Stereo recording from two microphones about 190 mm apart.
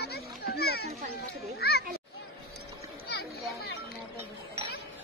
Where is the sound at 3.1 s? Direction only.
55° left (ahead or behind).